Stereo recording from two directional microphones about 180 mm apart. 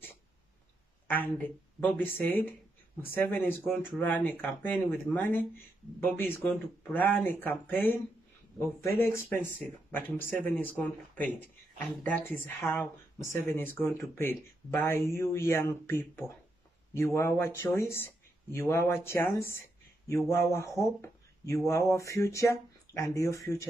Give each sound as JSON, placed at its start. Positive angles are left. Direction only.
{"t": 1.0, "sound": "a woman's voice", "side_deg": 10}